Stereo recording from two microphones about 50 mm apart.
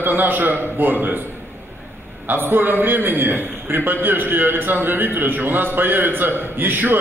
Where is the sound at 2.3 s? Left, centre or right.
Right.